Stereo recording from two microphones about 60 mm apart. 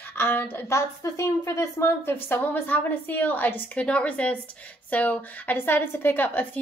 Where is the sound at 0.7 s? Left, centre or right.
Left.